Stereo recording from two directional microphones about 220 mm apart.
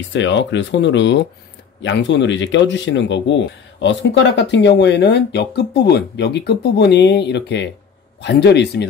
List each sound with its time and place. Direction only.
0.1 s speech: 55° left (ahead or behind)